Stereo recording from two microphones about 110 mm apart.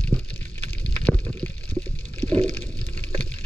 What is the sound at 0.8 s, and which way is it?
Water, 15° left (ahead or behind).